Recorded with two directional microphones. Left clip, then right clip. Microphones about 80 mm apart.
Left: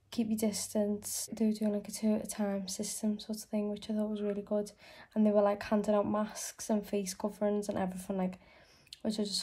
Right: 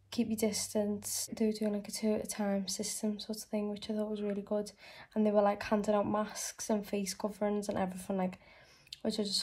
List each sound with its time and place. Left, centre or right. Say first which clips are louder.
0.1 s speech: right 1 dB; left